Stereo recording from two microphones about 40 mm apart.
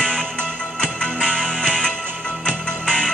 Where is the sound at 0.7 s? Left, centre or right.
Centre.